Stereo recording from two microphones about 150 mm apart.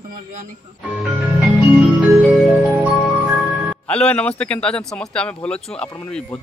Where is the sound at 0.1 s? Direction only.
60° right (ahead or behind).